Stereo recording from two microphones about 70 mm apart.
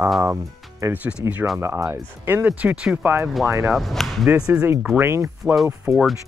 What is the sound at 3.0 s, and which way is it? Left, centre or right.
Speech, right.